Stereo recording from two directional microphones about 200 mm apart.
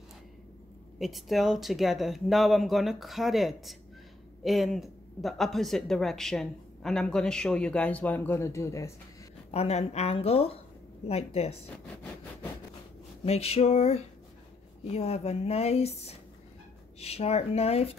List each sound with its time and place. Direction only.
0.9 s speech: centre (ahead or behind)
9.5 s speech: 30° left (ahead or behind)
13.2 s speech: 30° left (ahead or behind)